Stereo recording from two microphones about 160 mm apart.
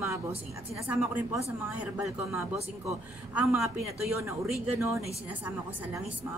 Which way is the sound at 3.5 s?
20° right (ahead or behind).